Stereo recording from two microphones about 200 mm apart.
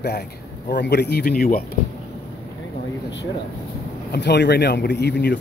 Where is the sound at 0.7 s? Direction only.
55° left (ahead or behind).